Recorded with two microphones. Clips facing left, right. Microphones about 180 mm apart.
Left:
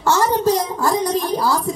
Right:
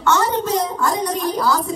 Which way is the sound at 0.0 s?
35° left (ahead or behind).